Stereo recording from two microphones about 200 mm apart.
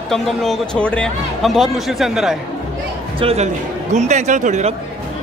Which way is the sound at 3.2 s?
30° right (ahead or behind).